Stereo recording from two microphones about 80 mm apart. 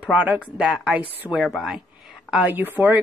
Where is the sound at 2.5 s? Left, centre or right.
Right.